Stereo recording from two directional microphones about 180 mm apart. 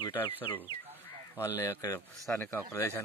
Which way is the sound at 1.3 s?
15° left (ahead or behind).